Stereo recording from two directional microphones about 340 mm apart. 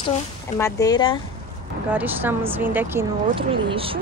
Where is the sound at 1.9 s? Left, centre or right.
Centre.